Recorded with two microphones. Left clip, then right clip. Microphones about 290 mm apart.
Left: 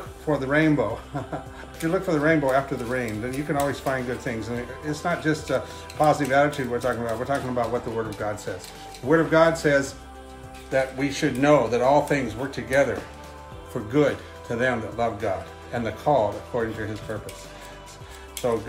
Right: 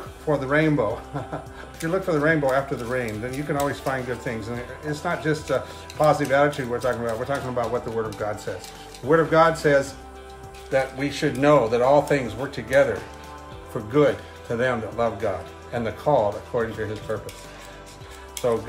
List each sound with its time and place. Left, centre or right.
0.3 s speech: centre
18.4 s speech: centre